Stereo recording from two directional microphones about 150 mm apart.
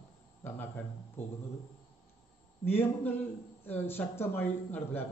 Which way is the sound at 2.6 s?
15° left (ahead or behind).